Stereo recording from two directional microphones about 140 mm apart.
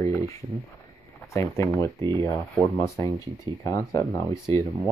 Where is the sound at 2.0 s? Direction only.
35° right (ahead or behind).